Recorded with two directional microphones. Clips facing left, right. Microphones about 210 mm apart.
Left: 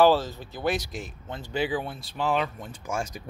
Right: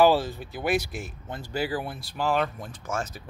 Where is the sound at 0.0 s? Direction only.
15° right (ahead or behind).